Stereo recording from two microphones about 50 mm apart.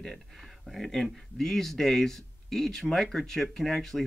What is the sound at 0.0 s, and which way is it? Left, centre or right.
Speech, centre.